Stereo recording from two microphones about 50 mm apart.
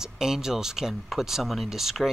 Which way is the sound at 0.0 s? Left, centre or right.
Centre.